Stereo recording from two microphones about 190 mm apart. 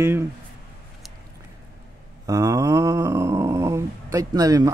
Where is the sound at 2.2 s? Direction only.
20° right (ahead or behind).